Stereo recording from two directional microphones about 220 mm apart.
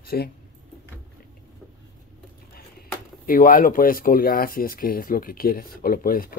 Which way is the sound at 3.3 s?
40° left (ahead or behind).